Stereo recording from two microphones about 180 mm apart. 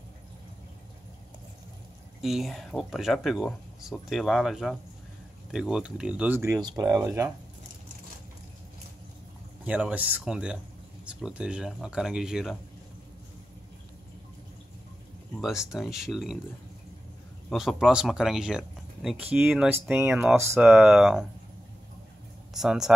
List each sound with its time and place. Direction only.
2.2 s speech: centre (ahead or behind)
9.7 s speech: 5° right (ahead or behind)
15.4 s speech: 5° right (ahead or behind)
17.5 s speech: centre (ahead or behind)
22.5 s speech: 5° right (ahead or behind)